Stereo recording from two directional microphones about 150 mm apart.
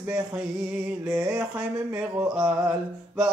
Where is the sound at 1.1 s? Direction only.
20° right (ahead or behind).